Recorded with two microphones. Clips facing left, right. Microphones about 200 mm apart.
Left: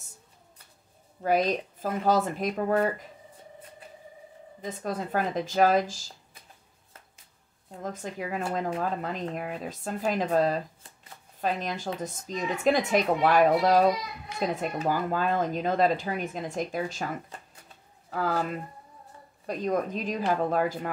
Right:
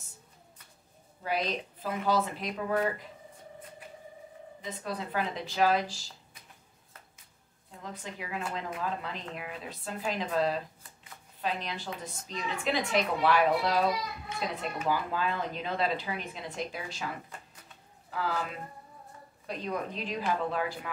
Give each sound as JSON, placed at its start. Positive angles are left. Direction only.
{"t": 1.2, "sound": "speech", "side_deg": 45}
{"t": 4.6, "sound": "speech", "side_deg": 45}
{"t": 7.8, "sound": "speech", "side_deg": 45}
{"t": 18.1, "sound": "speech", "side_deg": 45}